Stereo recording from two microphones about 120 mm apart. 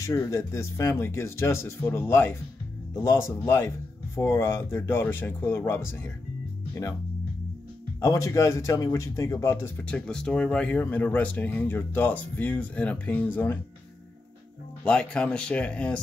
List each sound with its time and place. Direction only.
0.0 s speech: 25° left (ahead or behind)
8.0 s speech: 30° left (ahead or behind)
14.9 s speech: 10° left (ahead or behind)